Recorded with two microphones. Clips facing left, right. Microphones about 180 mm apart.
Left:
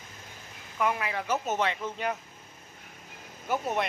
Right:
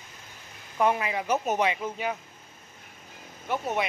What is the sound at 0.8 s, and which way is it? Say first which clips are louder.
Speech: right 4 dB; 25° right (ahead or behind).